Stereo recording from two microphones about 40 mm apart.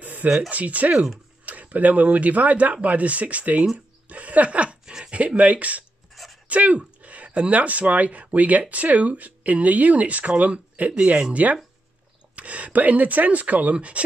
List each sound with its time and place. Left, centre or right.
0.0 s a sound: right
0.5 s speech: right
4.8 s dog: right
5.1 s speech: right